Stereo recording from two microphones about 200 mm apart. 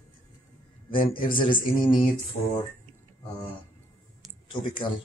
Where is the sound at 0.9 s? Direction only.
25° left (ahead or behind).